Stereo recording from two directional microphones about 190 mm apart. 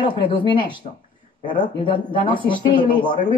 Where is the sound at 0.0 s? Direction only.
25° left (ahead or behind).